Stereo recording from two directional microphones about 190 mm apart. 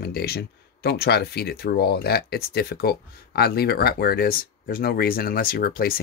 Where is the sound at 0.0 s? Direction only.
55° left (ahead or behind).